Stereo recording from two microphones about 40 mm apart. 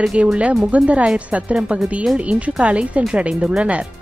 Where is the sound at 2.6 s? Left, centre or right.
Right.